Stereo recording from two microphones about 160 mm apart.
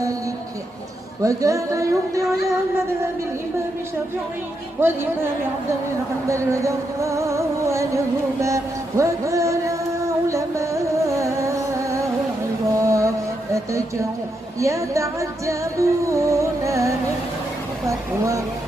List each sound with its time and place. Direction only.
1.2 s music: 20° right (ahead or behind)
4.7 s speech: 15° right (ahead or behind)
6.2 s music: 20° right (ahead or behind)